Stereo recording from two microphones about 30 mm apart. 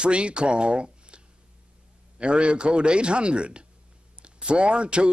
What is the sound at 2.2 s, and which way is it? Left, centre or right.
A man's voice, right.